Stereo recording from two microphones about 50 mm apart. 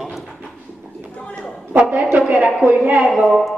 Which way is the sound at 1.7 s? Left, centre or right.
Right.